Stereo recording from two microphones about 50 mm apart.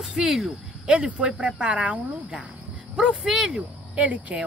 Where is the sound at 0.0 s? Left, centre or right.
Centre.